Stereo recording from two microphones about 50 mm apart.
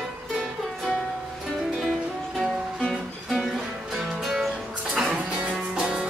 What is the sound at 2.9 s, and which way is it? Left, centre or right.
Music, centre.